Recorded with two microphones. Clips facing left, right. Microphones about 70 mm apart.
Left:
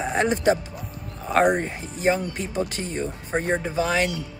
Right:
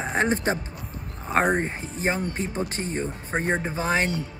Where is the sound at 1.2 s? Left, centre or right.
Right.